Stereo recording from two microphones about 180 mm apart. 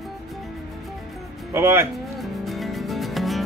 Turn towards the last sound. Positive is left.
turn(degrees=0)  # may be behind; listen again after turning